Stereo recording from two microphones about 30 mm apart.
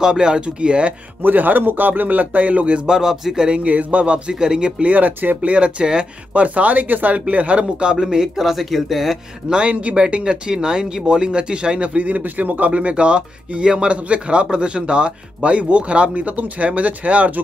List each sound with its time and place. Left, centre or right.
0.0 s speech: right
1.2 s speech: right
2.9 s speech: centre
3.6 s speech: right
4.3 s speech: right
4.8 s speech: right
5.4 s speech: right
6.8 s speech: right
7.2 s speech: right
8.4 s speech: centre
9.7 s speech: right
10.2 s speech: right
12.0 s speech: right
13.9 s speech: right